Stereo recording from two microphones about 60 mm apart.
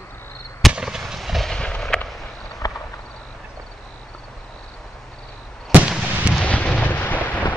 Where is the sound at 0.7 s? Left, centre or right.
Centre.